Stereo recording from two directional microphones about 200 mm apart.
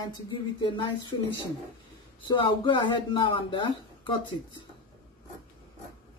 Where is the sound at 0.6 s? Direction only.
25° left (ahead or behind).